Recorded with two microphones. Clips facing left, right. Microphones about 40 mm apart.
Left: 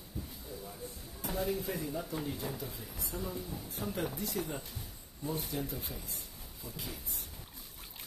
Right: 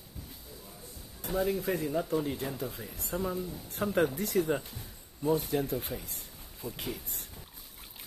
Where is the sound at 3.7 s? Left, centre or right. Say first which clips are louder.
Right 9 dB; right.